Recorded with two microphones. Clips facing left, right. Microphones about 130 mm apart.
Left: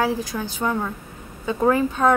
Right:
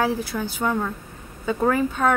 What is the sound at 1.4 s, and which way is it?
Speech, 15° left (ahead or behind).